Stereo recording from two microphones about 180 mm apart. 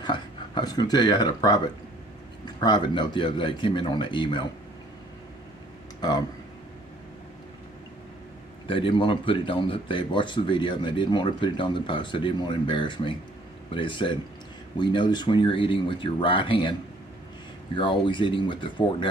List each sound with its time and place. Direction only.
0.0 s speech: 25° left (ahead or behind)
5.9 s speech: 25° left (ahead or behind)
8.6 s speech: 30° left (ahead or behind)
17.7 s speech: 25° left (ahead or behind)